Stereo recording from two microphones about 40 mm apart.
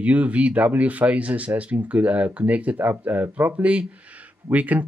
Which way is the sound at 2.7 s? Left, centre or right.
Right.